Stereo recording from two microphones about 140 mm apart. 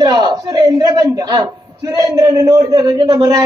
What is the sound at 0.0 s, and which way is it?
A man's voice, 30° right (ahead or behind).